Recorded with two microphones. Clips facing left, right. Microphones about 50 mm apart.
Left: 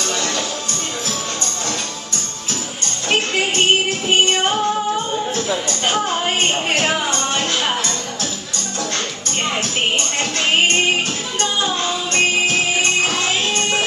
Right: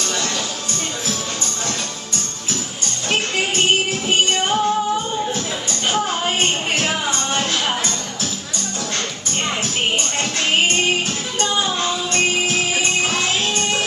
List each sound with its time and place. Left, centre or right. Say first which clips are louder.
4.3 s music: left 1 dB; centre
5.9 s music: left 1 dB; centre
11.4 s music: even; centre
13.6 s music: left 2 dB; centre